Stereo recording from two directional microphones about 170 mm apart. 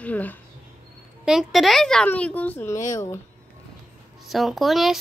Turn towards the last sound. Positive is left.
turn(degrees=0)  # may be behind; listen again after turning